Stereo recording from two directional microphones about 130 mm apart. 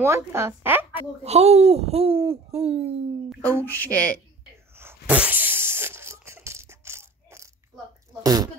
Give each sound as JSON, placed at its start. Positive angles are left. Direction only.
{"t": 0.0, "sound": "speech", "side_deg": -20}
{"t": 1.2, "sound": "speech", "side_deg": -55}
{"t": 3.6, "sound": "speech", "side_deg": 15}
{"t": 4.7, "sound": "a sound", "side_deg": -15}
{"t": 8.2, "sound": "speech", "side_deg": -30}